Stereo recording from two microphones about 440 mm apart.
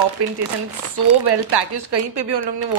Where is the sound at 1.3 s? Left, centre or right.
Right.